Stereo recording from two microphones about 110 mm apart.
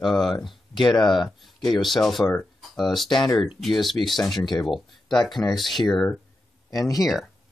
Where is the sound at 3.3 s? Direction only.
Centre (ahead or behind).